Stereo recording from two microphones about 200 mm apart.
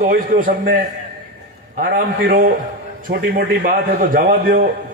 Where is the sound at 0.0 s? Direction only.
45° right (ahead or behind).